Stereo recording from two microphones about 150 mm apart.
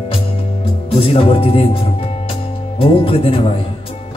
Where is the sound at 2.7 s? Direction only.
40° left (ahead or behind).